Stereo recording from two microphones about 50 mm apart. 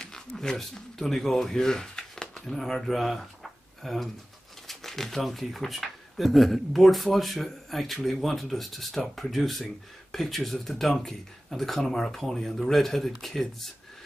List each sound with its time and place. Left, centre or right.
0.0 s speech: centre